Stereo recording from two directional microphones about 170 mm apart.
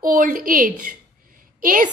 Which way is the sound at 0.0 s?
55° right (ahead or behind).